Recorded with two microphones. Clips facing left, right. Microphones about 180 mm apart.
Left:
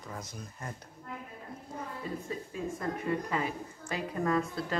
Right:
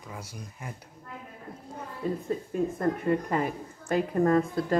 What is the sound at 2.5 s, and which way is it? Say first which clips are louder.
A woman's voice: right 8 dB; 50° right (ahead or behind).